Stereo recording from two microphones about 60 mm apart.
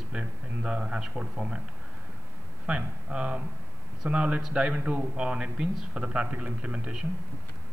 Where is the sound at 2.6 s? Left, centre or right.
Centre.